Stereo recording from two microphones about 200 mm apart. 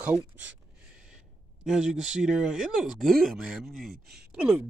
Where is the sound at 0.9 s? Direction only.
5° right (ahead or behind).